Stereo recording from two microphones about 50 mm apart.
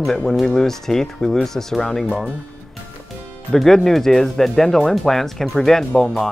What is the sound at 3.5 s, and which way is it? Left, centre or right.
Speech, centre.